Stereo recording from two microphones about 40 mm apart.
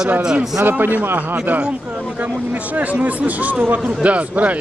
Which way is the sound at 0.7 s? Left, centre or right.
Right.